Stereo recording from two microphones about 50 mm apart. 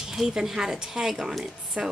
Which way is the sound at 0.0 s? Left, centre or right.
Centre.